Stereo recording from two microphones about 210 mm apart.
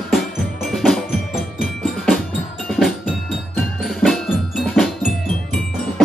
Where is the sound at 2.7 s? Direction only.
Centre (ahead or behind).